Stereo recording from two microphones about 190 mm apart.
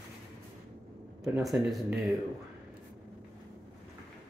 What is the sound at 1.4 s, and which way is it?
Speech, centre (ahead or behind).